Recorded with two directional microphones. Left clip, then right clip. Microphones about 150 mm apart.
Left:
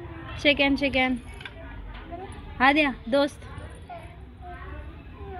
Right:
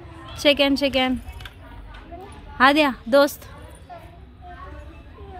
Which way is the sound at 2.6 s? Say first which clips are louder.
Right 4 dB; 45° right (ahead or behind).